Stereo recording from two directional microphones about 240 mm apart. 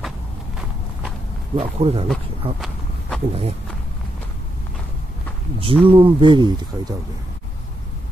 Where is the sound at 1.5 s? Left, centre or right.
Right.